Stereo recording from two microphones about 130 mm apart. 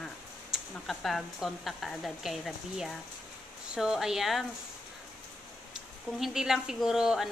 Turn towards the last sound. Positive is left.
turn(degrees=-5)  # may be behind; listen again after turning